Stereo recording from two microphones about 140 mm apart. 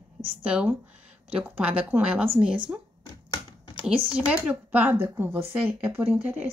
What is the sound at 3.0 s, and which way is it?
Computer keyboard, 30° left (ahead or behind).